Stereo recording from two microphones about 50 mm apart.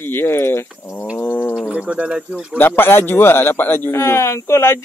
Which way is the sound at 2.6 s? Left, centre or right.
Left.